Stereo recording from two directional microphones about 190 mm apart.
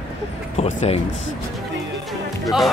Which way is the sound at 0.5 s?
35° left (ahead or behind).